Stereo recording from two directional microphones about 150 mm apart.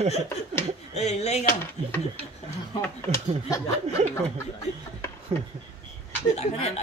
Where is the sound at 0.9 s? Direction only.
45° left (ahead or behind).